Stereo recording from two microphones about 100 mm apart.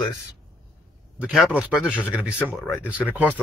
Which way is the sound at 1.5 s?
10° right (ahead or behind).